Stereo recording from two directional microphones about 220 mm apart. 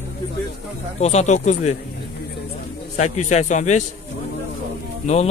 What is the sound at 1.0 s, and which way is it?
Speech, 30° left (ahead or behind).